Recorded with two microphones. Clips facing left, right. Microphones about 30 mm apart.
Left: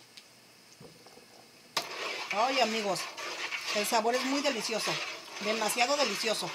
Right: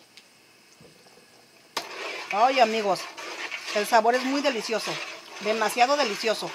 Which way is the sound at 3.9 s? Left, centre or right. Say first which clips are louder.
Right 8 dB; centre.